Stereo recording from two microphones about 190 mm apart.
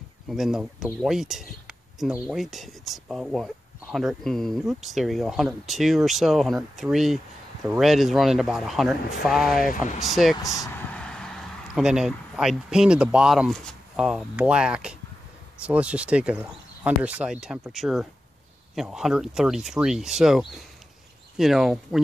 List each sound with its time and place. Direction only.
0.3 s speech: centre (ahead or behind)
11.0 s vehicle: 5° left (ahead or behind)
11.7 s speech: 5° right (ahead or behind)